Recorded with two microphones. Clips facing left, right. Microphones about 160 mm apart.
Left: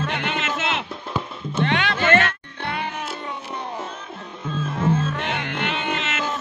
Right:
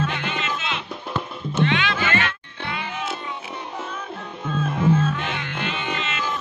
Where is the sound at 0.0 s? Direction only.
60° left (ahead or behind).